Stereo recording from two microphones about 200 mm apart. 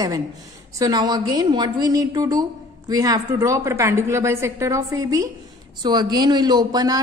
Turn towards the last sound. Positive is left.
turn(degrees=-20)  # may be behind; listen again after turning